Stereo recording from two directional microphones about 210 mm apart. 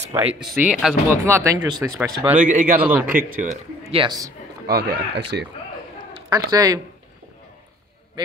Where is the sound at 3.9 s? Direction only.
20° right (ahead or behind).